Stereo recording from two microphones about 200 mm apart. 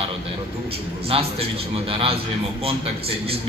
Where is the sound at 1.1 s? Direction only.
30° right (ahead or behind).